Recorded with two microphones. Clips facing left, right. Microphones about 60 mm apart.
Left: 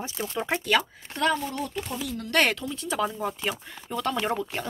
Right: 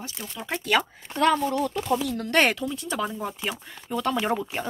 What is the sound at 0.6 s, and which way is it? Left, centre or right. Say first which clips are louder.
Speech: right 2 dB; centre.